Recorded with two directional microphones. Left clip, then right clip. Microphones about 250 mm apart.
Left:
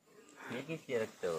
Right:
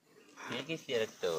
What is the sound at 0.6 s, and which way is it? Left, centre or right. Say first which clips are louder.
Speech: right 2 dB; right.